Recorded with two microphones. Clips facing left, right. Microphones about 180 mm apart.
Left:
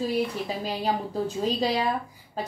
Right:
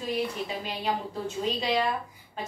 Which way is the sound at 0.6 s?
35° left (ahead or behind).